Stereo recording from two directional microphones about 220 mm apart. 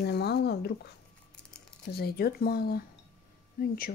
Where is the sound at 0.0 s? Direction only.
50° left (ahead or behind).